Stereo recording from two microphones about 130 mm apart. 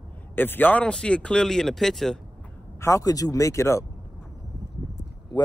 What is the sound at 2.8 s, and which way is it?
Speech, 25° left (ahead or behind).